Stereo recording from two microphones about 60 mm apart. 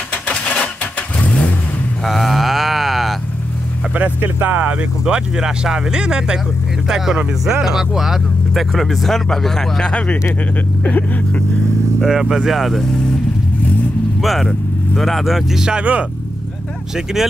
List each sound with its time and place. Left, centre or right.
0.3 s a sound: left
2.0 s a sound: centre
4.2 s speech: right; by 10.1 s centre
10.8 s vehicle: left
12.0 s speech: centre
14.2 s speech: centre
15.8 s speech: right
16.9 s speech: centre